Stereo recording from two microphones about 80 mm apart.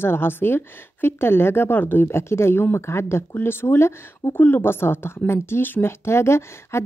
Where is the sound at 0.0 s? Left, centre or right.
Left.